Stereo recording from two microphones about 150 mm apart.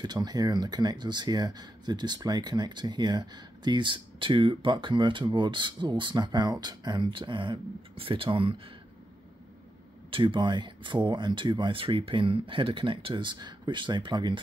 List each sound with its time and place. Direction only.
0.0 s speech: 30° right (ahead or behind)
10.1 s speech: 35° right (ahead or behind)